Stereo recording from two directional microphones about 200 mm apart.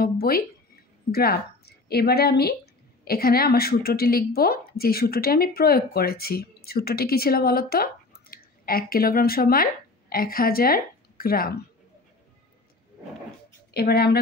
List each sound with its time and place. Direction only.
0.0 s a sound: 50° left (ahead or behind)
1.1 s a woman's voice: 50° left (ahead or behind)
13.7 s a woman's voice: 50° left (ahead or behind)